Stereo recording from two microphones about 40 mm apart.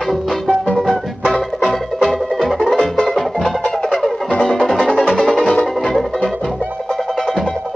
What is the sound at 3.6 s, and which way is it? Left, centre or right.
Music, centre.